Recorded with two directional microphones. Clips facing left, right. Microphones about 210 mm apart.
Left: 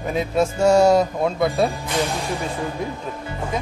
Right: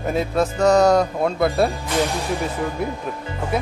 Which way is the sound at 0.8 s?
25° left (ahead or behind).